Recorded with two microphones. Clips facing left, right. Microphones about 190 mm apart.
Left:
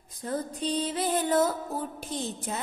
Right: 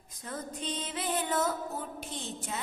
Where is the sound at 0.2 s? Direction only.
35° left (ahead or behind).